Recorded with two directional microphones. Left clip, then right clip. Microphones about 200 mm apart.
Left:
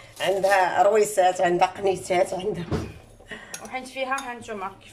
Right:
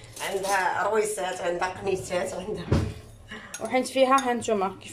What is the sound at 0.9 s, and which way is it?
Speech, 50° left (ahead or behind).